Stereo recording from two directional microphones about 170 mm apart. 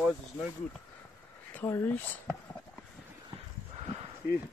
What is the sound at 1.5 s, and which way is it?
Speech, 15° left (ahead or behind).